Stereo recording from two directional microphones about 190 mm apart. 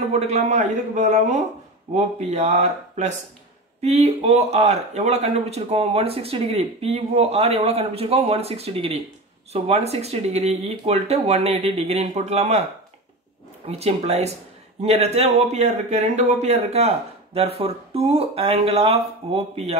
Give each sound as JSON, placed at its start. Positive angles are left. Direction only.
{"t": 0.1, "sound": "speech", "side_deg": -35}
{"t": 13.7, "sound": "speech", "side_deg": -35}